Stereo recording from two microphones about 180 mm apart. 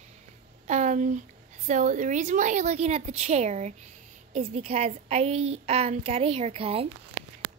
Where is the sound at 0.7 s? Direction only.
40° right (ahead or behind).